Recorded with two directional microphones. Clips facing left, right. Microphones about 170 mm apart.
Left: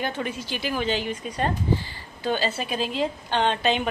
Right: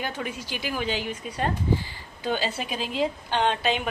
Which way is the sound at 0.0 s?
10° right (ahead or behind).